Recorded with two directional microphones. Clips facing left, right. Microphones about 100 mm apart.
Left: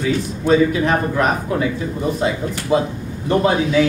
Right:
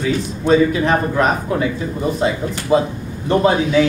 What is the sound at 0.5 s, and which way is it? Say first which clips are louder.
A man's voice: right 1 dB; 30° right (ahead or behind).